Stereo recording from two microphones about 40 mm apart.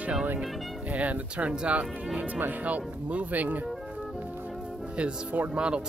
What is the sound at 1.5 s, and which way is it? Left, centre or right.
Speech, right.